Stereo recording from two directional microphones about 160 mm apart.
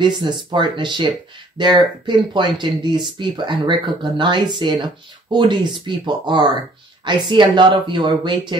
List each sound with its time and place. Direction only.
0.0 s speech: 30° right (ahead or behind)